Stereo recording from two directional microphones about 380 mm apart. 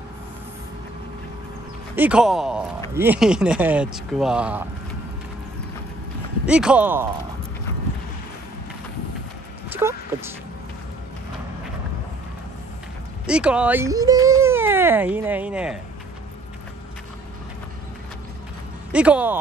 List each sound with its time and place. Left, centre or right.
2.0 s speech: centre
6.4 s speech: centre
9.7 s a sound: centre
13.3 s speech: centre
18.9 s speech: centre